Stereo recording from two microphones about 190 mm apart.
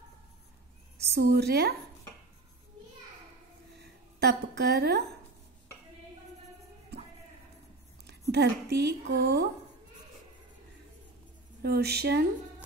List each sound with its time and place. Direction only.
1.0 s speech: 60° right (ahead or behind)
3.8 s a woman's voice: 60° right (ahead or behind)
6.9 s music: 60° right (ahead or behind)
8.1 s speech: 60° right (ahead or behind)
11.6 s speech: 55° right (ahead or behind)